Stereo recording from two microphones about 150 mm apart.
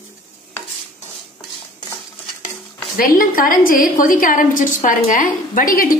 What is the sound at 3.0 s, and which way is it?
A woman's voice, 70° left (ahead or behind).